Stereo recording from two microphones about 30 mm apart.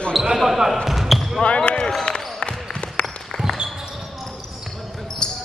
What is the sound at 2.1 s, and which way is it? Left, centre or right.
Basketball bounce, left.